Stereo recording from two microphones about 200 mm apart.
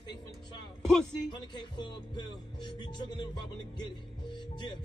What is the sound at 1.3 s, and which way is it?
Music, 20° left (ahead or behind).